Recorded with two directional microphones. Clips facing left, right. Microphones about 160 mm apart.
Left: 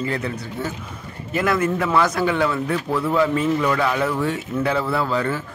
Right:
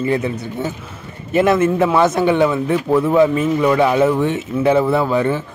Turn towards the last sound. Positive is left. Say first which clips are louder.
# right 6 dB
turn(degrees=-20)  # may be behind; listen again after turning